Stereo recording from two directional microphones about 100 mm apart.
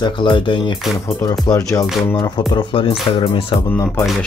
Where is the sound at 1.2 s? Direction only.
35° left (ahead or behind).